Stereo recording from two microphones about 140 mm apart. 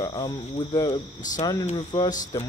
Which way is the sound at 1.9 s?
30° left (ahead or behind).